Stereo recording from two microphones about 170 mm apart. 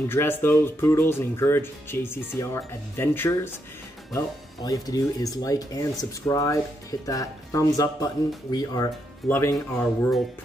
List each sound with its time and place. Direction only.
0.1 s speech: 15° left (ahead or behind)
4.6 s speech: 20° left (ahead or behind)